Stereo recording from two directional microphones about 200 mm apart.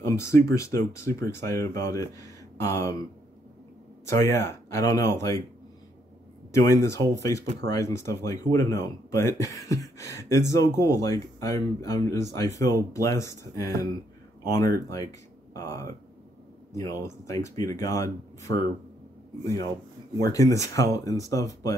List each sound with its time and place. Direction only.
0.1 s speech: 15° left (ahead or behind)
4.0 s speech: 15° left (ahead or behind)
6.5 s speech: 15° left (ahead or behind)
20.2 s speech: 15° left (ahead or behind)